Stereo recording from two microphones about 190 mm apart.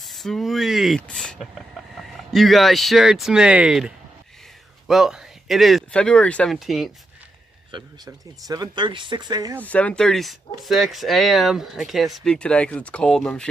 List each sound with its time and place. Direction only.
0.0 s a sound: centre (ahead or behind)
2.0 s speech: centre (ahead or behind)
7.7 s speech: 20° right (ahead or behind)
9.7 s speech: 5° left (ahead or behind)